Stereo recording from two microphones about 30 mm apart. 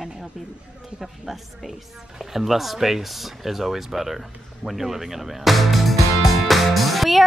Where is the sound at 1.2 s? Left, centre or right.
Centre.